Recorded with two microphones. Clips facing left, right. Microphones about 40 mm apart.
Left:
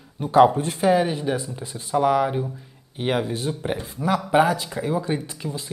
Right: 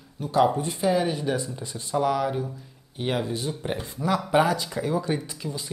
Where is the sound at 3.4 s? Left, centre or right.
Centre.